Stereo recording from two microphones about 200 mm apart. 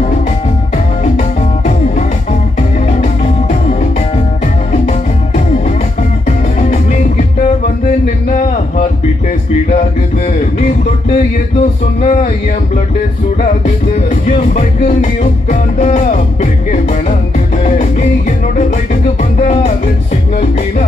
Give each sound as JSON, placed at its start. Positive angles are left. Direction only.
{"t": 6.2, "sound": "music", "side_deg": 35}
{"t": 12.0, "sound": "music", "side_deg": 35}
{"t": 14.2, "sound": "music", "side_deg": 40}
{"t": 19.3, "sound": "music", "side_deg": 35}